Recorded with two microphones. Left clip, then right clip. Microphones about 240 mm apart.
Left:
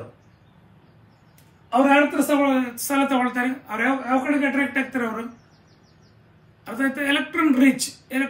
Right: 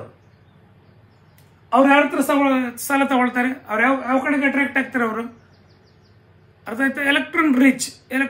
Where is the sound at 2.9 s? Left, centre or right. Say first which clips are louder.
Right 3 dB; centre.